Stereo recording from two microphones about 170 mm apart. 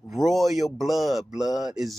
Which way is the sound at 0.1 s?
Centre (ahead or behind).